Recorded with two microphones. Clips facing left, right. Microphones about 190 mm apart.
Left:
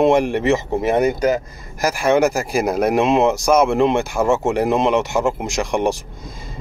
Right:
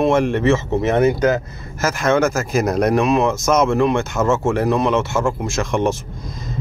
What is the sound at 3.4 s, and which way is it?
Speech, 10° left (ahead or behind).